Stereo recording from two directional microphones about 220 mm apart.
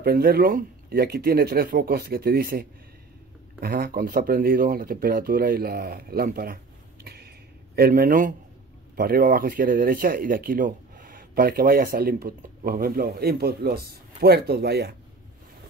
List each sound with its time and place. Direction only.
0.0 s speech: 45° right (ahead or behind)
3.6 s speech: 40° right (ahead or behind)
7.1 s a sound: 45° right (ahead or behind)
8.9 s speech: 40° right (ahead or behind)